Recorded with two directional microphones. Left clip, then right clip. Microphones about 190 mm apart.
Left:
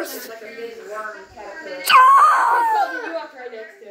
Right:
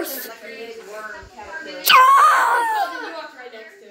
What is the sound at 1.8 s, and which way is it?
Screaming, 25° right (ahead or behind).